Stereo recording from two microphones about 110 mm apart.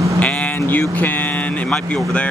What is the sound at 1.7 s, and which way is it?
Speech, 10° left (ahead or behind).